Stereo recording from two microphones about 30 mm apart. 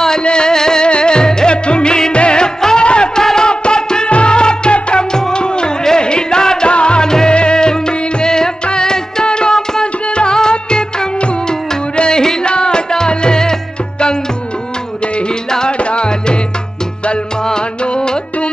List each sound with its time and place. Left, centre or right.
0.2 s music: left
0.8 s music: left
2.1 s music of bollywood: left
2.8 s music: left
3.2 s music: left
5.1 s music: left
6.7 s music: left
7.0 s music: left
15.8 s music: left
17.9 s music: left